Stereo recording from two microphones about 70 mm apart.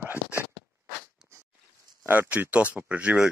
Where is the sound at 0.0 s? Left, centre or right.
Right.